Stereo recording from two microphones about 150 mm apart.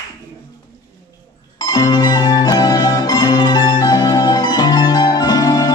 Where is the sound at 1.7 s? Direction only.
25° left (ahead or behind).